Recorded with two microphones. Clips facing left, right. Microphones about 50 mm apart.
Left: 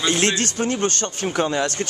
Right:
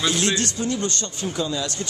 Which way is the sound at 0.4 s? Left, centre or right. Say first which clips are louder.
Left 3 dB; left.